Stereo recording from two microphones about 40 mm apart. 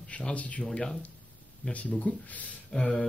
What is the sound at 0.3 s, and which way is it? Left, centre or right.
Speech, left.